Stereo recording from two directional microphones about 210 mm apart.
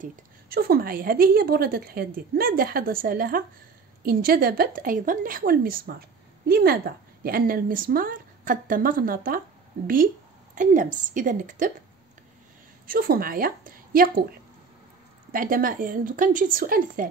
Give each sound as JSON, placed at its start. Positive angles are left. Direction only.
{"t": 0.0, "sound": "a woman's voice", "side_deg": -40}
{"t": 10.5, "sound": "a woman's voice", "side_deg": -40}
{"t": 12.8, "sound": "a woman's voice", "side_deg": -45}
{"t": 15.3, "sound": "a woman's voice", "side_deg": -40}